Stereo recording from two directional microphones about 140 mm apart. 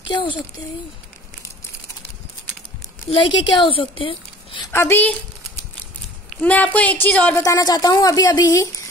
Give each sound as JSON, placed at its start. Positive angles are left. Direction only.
{"t": 0.0, "sound": "speech", "side_deg": 35}
{"t": 3.1, "sound": "a woman's voice", "side_deg": 35}
{"t": 4.7, "sound": "a woman's voice", "side_deg": 15}
{"t": 6.4, "sound": "a woman's voice", "side_deg": 10}
{"t": 7.4, "sound": "speech", "side_deg": 25}